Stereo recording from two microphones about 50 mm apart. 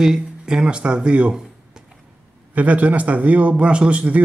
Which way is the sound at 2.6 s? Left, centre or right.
Right.